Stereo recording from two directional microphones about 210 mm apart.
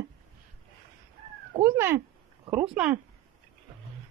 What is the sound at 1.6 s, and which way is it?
Speech, 10° right (ahead or behind).